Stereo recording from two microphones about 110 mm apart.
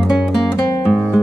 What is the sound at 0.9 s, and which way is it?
Music, 15° left (ahead or behind).